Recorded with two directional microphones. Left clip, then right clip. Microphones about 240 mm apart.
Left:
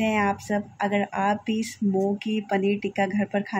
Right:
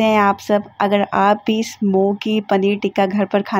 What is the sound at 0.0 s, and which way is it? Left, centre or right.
Speech, centre.